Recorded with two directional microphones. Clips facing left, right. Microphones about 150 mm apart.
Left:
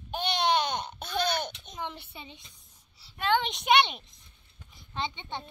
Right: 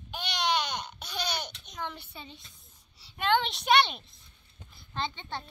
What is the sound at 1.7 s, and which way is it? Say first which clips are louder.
Speech: right 1 dB; 25° left (ahead or behind).